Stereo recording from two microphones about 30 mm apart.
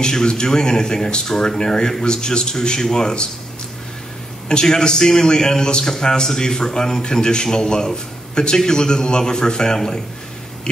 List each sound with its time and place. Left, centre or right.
0.0 s a man's voice: left
4.5 s a man's voice: left